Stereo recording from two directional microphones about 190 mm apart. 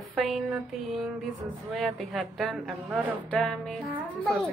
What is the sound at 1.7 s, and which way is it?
A woman's voice, centre (ahead or behind).